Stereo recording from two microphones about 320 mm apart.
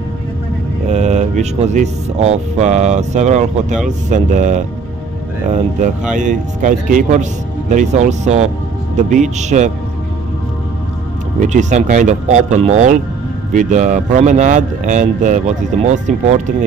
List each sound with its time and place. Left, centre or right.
0.8 s speech: right
5.8 s speech: right
11.4 s speech: right